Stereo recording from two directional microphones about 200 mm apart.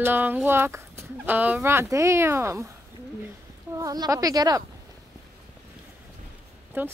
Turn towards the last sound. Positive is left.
turn(degrees=-10)  # may be behind; listen again after turning